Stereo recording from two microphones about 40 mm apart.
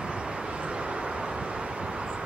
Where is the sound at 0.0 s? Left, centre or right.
Right.